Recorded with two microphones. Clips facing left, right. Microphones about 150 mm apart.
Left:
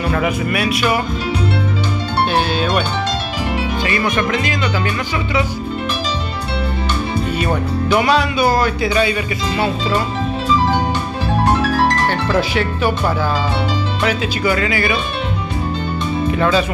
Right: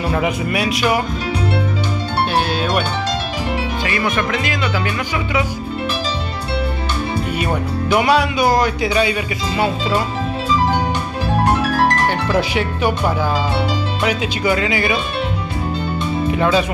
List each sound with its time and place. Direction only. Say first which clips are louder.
0.1 s speech: left 1 dB; 20° right (ahead or behind)
2.3 s speech: even; 5° right (ahead or behind)
3.8 s speech: left 2 dB; 5° right (ahead or behind)
7.3 s speech: left 2 dB; 10° right (ahead or behind)
11.9 s speech: even; 15° right (ahead or behind)
16.3 s speech: even; 15° right (ahead or behind)